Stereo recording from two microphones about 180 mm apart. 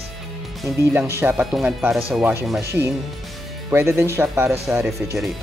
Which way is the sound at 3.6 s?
15° right (ahead or behind).